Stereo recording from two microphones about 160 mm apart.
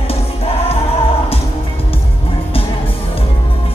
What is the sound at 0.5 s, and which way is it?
Music, 35° left (ahead or behind).